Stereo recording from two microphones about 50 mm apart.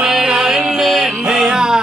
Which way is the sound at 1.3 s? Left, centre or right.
Centre.